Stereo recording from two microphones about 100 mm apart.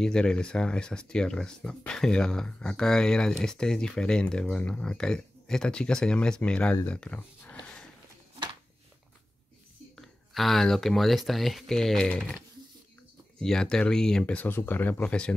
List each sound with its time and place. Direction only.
0.0 s speech: 5° left (ahead or behind)
9.9 s speech: centre (ahead or behind)
13.4 s speech: 5° left (ahead or behind)
14.2 s speech: 15° left (ahead or behind)